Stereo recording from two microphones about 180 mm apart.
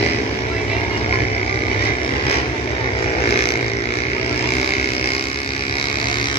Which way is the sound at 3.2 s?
35° left (ahead or behind).